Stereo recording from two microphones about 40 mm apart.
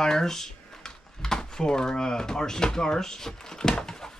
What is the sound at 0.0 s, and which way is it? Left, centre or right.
Speech, centre.